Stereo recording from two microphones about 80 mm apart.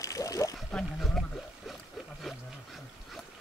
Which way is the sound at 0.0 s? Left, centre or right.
Left.